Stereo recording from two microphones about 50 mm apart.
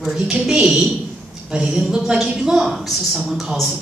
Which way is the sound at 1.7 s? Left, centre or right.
Centre.